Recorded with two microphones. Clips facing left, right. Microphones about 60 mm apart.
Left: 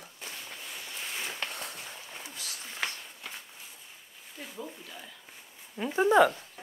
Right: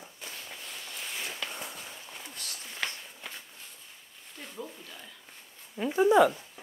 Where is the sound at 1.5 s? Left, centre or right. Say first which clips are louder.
Even; left.